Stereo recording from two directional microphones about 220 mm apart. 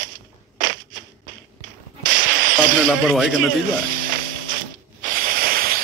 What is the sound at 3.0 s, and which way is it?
Speech, centre (ahead or behind).